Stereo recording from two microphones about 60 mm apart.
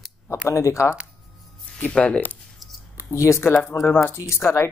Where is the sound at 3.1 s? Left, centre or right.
Left.